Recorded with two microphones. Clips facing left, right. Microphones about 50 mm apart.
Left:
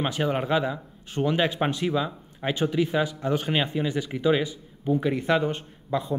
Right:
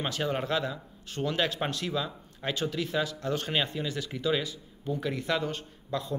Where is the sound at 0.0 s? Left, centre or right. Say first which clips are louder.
Left 5 dB; centre.